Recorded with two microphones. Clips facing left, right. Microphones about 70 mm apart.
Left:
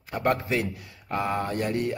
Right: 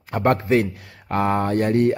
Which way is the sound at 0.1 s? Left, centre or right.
Right.